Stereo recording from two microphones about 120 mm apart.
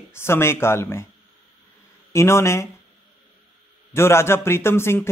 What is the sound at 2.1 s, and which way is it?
Speech, 25° left (ahead or behind).